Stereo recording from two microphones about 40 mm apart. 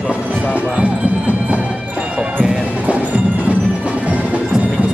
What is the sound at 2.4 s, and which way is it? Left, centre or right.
Music, right.